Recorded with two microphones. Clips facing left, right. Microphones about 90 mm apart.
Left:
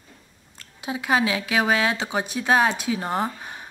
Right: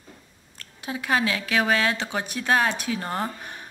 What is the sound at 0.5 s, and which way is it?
A woman's voice, 20° left (ahead or behind).